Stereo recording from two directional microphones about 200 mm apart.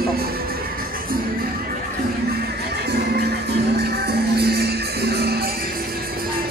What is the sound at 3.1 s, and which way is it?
Music, 55° right (ahead or behind).